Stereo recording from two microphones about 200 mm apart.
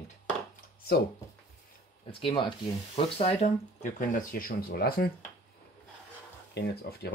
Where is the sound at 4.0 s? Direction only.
45° left (ahead or behind).